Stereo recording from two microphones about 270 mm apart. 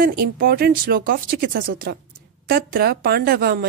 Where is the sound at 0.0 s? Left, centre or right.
Right.